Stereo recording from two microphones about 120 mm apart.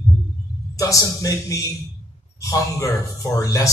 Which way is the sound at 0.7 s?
30° left (ahead or behind).